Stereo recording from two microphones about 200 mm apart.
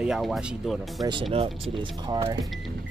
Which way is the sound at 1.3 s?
25° right (ahead or behind).